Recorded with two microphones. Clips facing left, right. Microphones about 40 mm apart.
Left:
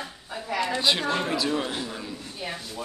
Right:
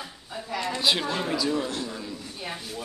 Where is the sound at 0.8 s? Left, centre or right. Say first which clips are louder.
Right 1 dB; centre.